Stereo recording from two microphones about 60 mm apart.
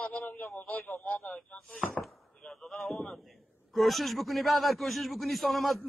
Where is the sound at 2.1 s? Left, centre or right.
Centre.